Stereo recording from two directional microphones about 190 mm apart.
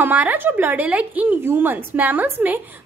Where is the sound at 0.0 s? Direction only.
10° right (ahead or behind).